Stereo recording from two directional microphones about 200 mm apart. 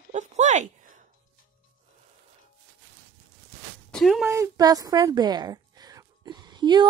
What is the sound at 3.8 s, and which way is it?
Speech, centre (ahead or behind).